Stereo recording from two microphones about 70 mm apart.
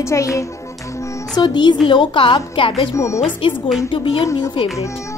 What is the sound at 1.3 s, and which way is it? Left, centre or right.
Speech, left.